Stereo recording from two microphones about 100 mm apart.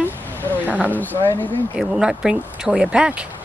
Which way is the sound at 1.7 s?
5° right (ahead or behind).